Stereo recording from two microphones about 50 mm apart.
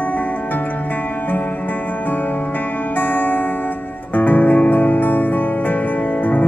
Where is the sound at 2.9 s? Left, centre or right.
Left.